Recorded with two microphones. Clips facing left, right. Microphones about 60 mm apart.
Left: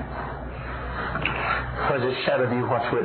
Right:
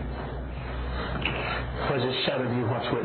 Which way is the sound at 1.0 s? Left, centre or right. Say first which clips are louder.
Left 4 dB; left.